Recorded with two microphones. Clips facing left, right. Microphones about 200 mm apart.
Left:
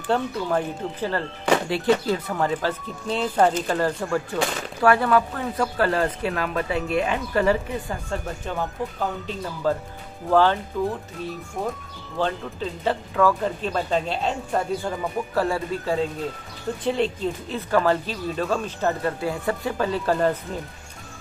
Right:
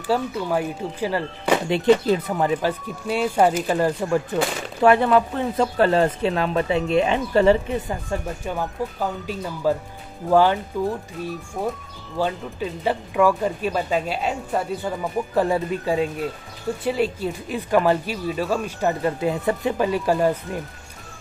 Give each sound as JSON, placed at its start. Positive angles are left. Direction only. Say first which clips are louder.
{"t": 0.0, "sound": "speech", "louder": "right 1 dB", "side_deg": -5}
{"t": 8.5, "sound": "speech", "louder": "even", "side_deg": -5}
{"t": 11.6, "sound": "speech", "louder": "right 2 dB", "side_deg": 0}
{"t": 15.3, "sound": "speech", "louder": "right 4 dB", "side_deg": -15}